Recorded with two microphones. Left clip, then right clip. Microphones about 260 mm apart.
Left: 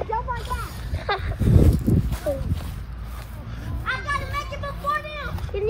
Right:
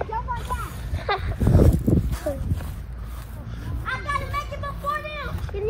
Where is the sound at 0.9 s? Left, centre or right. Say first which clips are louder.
Even; right.